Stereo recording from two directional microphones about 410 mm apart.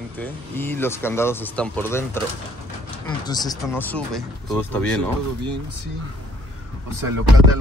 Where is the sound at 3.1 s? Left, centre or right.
Centre.